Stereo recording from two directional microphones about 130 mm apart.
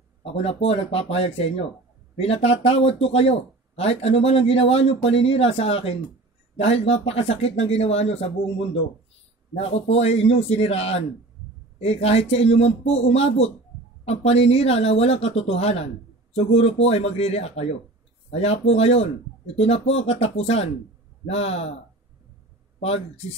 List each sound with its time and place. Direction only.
0.2 s speech: 50° left (ahead or behind)
9.7 s speech: 55° left (ahead or behind)
22.8 s speech: 50° left (ahead or behind)